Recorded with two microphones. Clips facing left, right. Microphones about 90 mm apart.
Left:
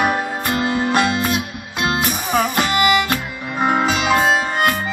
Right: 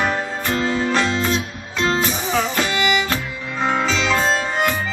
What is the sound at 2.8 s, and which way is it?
Music, 55° left (ahead or behind).